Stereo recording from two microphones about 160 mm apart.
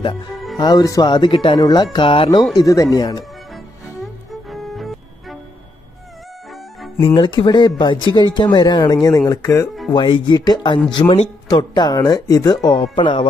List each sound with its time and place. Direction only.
0.6 s speech: 25° left (ahead or behind)
2.6 s speech: 20° left (ahead or behind)
4.0 s music: centre (ahead or behind)
7.2 s speech: 25° left (ahead or behind)